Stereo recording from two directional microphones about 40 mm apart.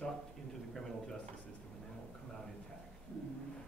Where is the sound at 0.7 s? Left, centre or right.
Centre.